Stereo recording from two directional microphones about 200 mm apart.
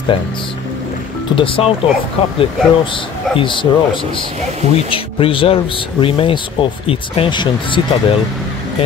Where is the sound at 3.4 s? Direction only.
25° left (ahead or behind).